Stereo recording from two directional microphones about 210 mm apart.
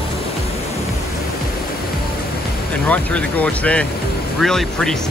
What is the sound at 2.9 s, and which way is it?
Speech, 5° left (ahead or behind).